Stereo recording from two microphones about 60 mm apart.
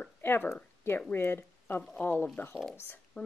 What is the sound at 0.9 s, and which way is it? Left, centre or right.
Speech, left.